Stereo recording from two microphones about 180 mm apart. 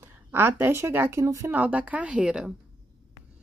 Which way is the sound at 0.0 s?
15° right (ahead or behind).